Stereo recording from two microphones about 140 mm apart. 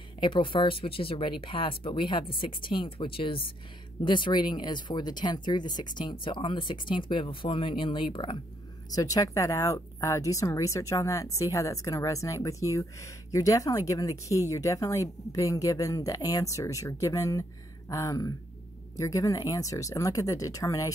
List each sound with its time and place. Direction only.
0.2 s a woman's voice: 35° left (ahead or behind)